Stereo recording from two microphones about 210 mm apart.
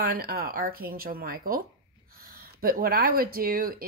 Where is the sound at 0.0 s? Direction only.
45° right (ahead or behind).